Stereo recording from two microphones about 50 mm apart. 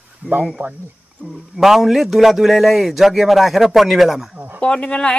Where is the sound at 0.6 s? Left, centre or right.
Right.